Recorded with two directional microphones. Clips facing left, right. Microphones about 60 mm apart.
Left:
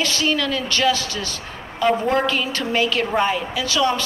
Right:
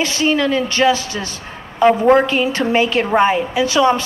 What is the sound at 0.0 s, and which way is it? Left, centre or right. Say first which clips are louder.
Speech: right 5 dB; right.